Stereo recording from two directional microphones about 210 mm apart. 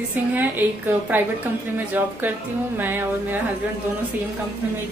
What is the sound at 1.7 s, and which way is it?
A woman's voice, 10° right (ahead or behind).